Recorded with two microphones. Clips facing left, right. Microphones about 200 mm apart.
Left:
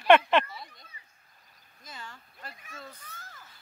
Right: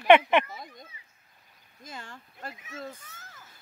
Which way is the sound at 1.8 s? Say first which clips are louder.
Right 3 dB; 50° right (ahead or behind).